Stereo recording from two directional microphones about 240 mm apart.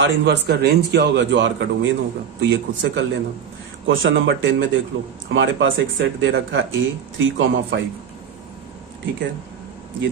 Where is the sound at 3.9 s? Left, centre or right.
Right.